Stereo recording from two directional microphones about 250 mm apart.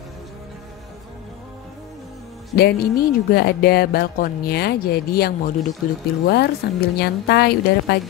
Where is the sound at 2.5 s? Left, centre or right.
Left.